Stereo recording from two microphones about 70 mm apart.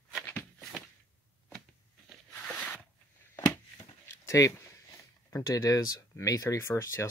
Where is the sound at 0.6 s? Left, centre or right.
Centre.